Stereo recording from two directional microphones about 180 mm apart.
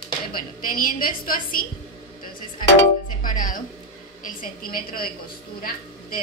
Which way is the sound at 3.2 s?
50° left (ahead or behind).